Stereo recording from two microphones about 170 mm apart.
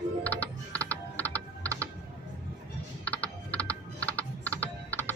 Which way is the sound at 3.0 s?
10° left (ahead or behind).